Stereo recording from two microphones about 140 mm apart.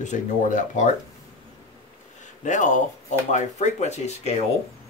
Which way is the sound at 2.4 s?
60° left (ahead or behind).